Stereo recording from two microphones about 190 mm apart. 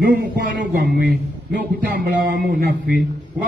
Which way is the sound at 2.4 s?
50° right (ahead or behind).